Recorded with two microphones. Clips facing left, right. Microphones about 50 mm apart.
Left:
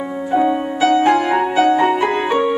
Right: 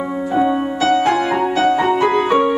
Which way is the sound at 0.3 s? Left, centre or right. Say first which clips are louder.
Left 1 dB; centre.